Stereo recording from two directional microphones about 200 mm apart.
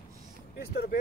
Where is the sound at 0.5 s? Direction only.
55° left (ahead or behind).